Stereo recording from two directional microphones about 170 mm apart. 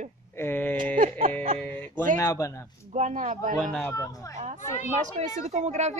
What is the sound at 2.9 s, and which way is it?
Speech, 45° right (ahead or behind).